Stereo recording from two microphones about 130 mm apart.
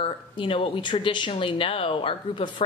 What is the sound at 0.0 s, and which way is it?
Speech, 45° left (ahead or behind).